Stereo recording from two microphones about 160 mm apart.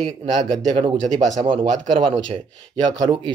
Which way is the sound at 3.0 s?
30° right (ahead or behind).